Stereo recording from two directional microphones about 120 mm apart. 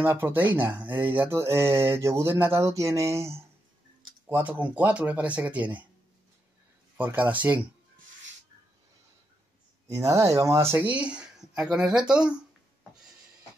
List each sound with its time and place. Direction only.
0.0 s speech: 20° right (ahead or behind)
7.0 s speech: 15° right (ahead or behind)
9.8 s speech: 30° right (ahead or behind); by 12.4 s 10° right (ahead or behind)